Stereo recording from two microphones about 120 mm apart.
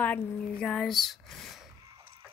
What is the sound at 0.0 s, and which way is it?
Speech, 10° left (ahead or behind).